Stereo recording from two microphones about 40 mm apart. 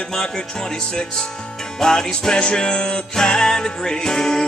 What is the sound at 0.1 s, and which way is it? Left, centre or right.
Speech, centre.